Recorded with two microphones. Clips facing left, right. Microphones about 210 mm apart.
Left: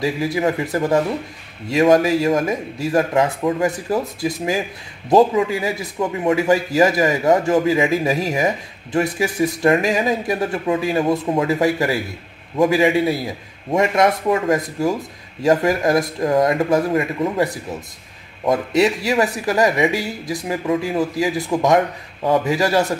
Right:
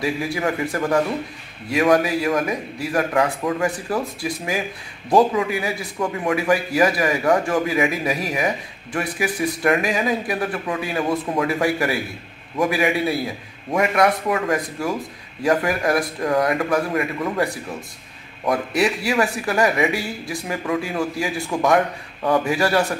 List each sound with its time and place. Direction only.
0.0 s speech: 20° left (ahead or behind)
18.5 s speech: 20° left (ahead or behind)